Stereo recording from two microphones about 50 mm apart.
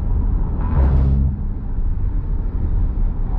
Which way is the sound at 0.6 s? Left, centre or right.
Left.